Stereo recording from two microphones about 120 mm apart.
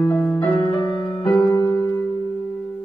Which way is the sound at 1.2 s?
35° left (ahead or behind).